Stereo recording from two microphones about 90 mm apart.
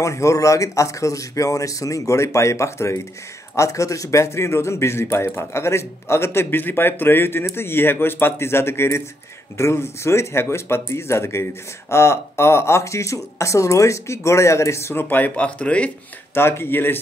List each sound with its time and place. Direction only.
0.0 s a man's voice: 35° left (ahead or behind); by 15.9 s 15° left (ahead or behind)
16.3 s a man's voice: 25° left (ahead or behind)